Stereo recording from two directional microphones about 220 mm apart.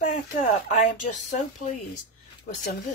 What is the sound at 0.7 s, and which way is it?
A woman's voice, 30° left (ahead or behind).